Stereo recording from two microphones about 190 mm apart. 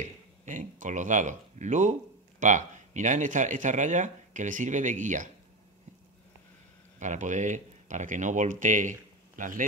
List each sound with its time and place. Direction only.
0.0 s speech: 45° right (ahead or behind)
7.0 s a man's voice: 40° right (ahead or behind)